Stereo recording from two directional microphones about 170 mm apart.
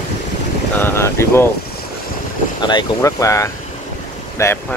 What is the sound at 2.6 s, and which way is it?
Speech, 25° left (ahead or behind).